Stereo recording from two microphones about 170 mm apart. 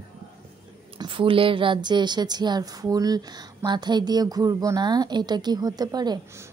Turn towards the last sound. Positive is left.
turn(degrees=-20)  # may be behind; listen again after turning